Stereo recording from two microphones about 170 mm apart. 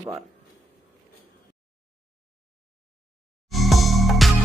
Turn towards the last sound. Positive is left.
turn(degrees=0)  # may be behind; listen again after turning